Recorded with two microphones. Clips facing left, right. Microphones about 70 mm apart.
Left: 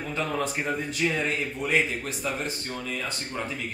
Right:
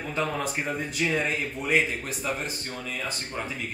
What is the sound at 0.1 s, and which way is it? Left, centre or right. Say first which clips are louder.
A man's voice: even; centre.